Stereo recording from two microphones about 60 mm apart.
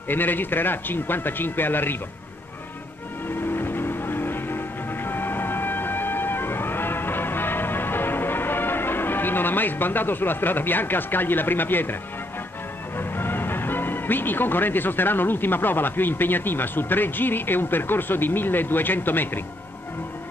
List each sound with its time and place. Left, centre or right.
0.1 s speech: left
3.3 s music: left
12.9 s speech: left